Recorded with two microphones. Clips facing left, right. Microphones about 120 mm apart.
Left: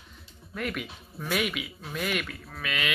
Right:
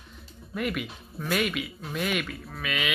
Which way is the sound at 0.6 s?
Centre (ahead or behind).